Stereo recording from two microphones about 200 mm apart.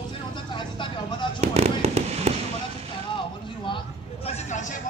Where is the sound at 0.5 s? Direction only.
25° left (ahead or behind).